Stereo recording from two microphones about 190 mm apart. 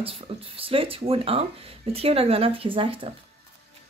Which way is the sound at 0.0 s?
30° right (ahead or behind).